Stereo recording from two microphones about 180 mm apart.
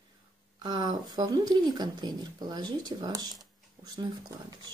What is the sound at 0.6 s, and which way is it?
Speech, 25° right (ahead or behind).